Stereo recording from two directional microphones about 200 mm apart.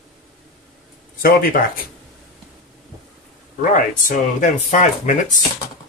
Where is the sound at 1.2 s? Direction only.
45° left (ahead or behind).